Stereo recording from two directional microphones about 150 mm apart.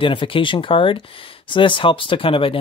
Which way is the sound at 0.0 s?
35° left (ahead or behind).